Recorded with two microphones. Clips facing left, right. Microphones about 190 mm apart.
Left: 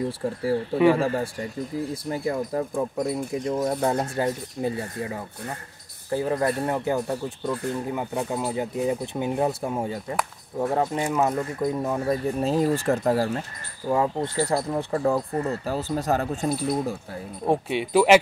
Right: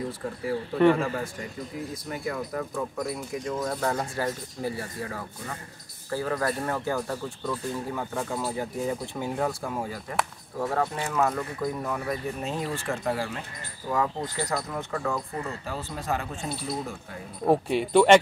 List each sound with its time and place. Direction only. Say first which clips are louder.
0.9 s speech: left 5 dB; 35° left (ahead or behind)
13.8 s speech: left 5 dB; 25° left (ahead or behind)
17.5 s speech: right 1 dB; centre (ahead or behind)